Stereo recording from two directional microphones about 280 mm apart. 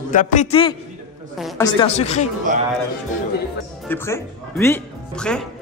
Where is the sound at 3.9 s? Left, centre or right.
Centre.